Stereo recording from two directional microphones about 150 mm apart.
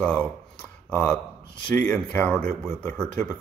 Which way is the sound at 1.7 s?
10° left (ahead or behind).